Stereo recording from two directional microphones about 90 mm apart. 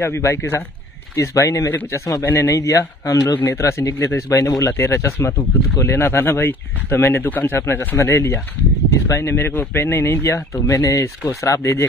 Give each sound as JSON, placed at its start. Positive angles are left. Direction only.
{"t": 0.0, "sound": "speech", "side_deg": 30}